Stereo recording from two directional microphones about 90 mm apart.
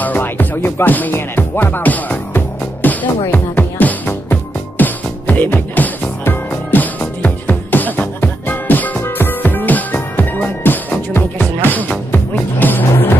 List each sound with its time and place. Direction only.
0.0 s music: 20° left (ahead or behind)